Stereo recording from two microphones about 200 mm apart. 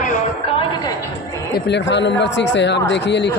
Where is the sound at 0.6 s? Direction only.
20° left (ahead or behind).